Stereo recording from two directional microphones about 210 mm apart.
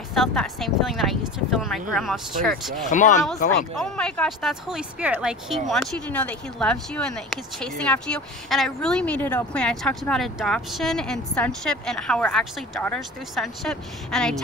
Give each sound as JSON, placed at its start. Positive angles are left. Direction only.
{"t": 0.1, "sound": "speech", "side_deg": 0}
{"t": 2.9, "sound": "speech", "side_deg": 35}
{"t": 3.7, "sound": "speech", "side_deg": 5}